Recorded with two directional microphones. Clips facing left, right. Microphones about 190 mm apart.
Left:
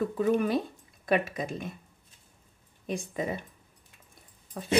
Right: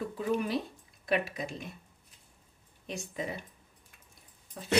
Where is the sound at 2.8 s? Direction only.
50° left (ahead or behind).